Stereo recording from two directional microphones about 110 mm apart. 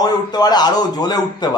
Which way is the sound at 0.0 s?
40° left (ahead or behind).